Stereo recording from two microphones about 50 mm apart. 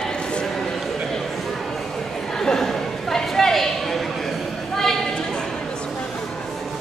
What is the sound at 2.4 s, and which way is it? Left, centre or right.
Chatter, centre.